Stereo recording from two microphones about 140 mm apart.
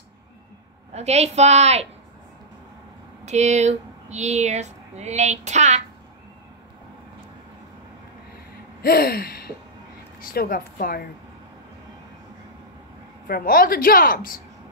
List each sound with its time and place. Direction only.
0.9 s speech: 50° right (ahead or behind)
3.3 s speech: 55° right (ahead or behind)
8.8 s a woman's voice: 90° left
13.3 s a woman's voice: 90° left